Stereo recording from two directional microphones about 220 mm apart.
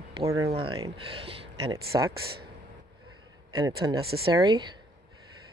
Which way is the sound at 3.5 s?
20° right (ahead or behind).